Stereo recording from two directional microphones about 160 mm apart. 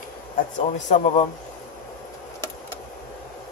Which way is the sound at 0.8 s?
50° left (ahead or behind).